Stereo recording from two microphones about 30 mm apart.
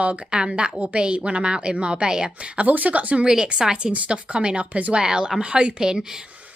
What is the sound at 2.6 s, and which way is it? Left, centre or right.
Speech, right.